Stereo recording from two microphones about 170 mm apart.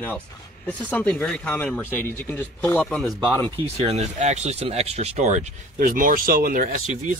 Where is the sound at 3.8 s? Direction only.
40° right (ahead or behind).